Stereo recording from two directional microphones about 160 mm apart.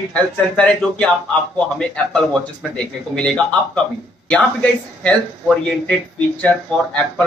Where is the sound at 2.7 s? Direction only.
10° left (ahead or behind).